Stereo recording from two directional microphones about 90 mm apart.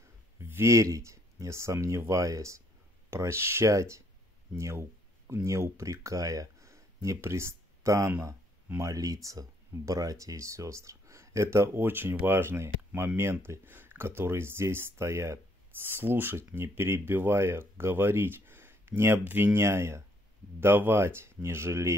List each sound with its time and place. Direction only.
0.4 s speech: 30° right (ahead or behind)